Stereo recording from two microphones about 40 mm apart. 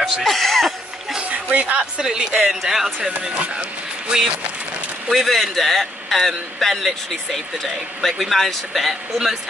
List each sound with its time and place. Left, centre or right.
0.0 s speech: centre
1.2 s a sound: right
2.0 s speech: centre
2.3 s speech: centre
3.1 s speech: right
5.1 s speech: centre